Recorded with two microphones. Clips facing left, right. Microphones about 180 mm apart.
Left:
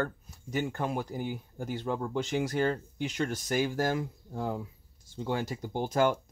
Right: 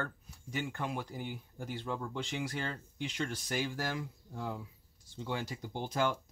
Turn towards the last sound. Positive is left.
turn(degrees=45)  # may be behind; listen again after turning